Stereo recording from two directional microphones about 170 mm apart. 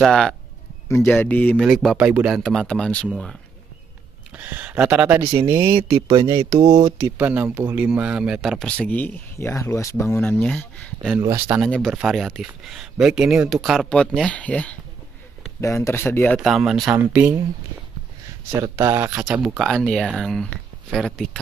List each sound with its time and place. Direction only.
0.0 s speech: 5° left (ahead or behind)
4.4 s speech: 10° right (ahead or behind)
5.8 s speech: 35° right (ahead or behind); by 11.1 s 5° left (ahead or behind)
11.1 s speech: 15° right (ahead or behind); by 16.3 s 10° left (ahead or behind)
16.3 s speech: centre (ahead or behind)
18.5 s speech: 15° right (ahead or behind); by 21.3 s centre (ahead or behind)